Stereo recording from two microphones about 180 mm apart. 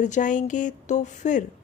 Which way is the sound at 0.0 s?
45° left (ahead or behind).